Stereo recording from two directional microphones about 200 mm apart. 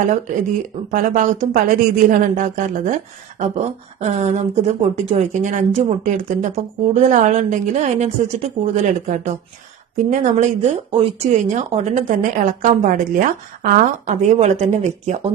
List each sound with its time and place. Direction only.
0.8 s speech: 40° right (ahead or behind)